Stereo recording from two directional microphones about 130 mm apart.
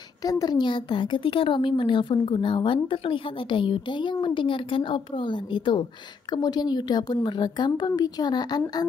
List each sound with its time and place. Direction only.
0.2 s speech: 30° left (ahead or behind)